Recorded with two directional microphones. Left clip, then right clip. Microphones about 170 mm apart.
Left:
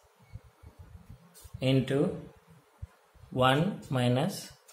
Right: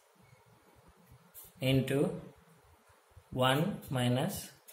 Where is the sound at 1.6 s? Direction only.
25° left (ahead or behind).